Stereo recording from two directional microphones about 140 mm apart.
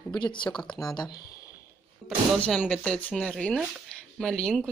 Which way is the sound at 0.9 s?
30° left (ahead or behind).